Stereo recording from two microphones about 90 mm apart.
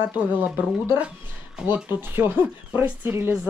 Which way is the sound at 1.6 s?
25° right (ahead or behind).